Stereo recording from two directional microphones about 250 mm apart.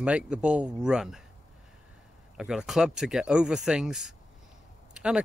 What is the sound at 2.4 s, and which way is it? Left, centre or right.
Speech, centre.